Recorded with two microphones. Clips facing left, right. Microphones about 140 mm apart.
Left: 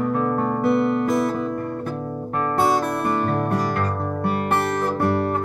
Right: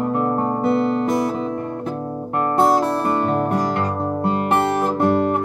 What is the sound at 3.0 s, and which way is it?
Music, 25° right (ahead or behind).